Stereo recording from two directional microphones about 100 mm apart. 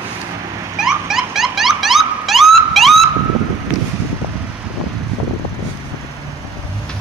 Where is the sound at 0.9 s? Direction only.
5° right (ahead or behind).